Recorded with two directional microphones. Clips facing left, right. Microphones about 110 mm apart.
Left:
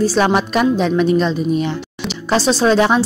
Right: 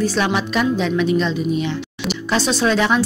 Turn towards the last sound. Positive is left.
turn(degrees=35)  # may be behind; listen again after turning